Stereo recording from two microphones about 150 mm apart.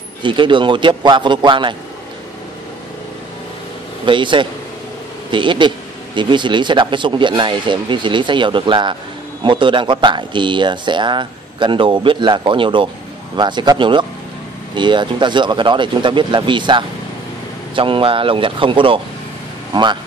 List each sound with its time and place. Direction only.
0.2 s speech: 35° right (ahead or behind)
4.0 s speech: 35° right (ahead or behind)